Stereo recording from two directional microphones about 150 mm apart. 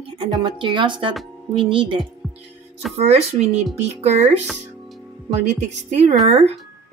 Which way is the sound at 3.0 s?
45° right (ahead or behind).